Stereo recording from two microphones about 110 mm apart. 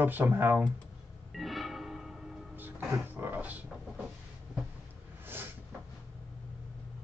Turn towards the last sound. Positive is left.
turn(degrees=-20)  # may be behind; listen again after turning